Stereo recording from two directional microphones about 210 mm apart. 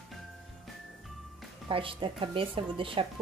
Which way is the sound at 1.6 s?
25° right (ahead or behind).